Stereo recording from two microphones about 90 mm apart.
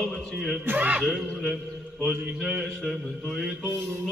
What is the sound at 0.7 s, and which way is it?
Speech, 15° right (ahead or behind).